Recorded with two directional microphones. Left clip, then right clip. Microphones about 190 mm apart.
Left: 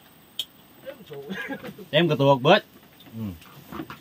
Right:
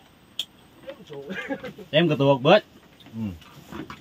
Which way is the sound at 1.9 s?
20° left (ahead or behind).